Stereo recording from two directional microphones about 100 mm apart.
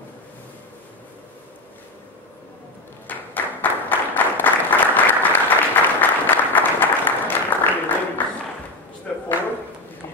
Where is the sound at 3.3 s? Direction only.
20° left (ahead or behind).